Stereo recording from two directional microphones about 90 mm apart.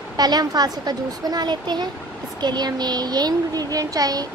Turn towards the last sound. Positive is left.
turn(degrees=-45)  # may be behind; listen again after turning